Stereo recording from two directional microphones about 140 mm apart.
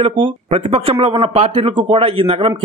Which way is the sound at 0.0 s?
40° right (ahead or behind).